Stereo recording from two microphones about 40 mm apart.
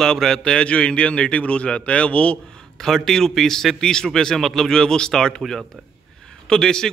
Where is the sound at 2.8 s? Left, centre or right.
Centre.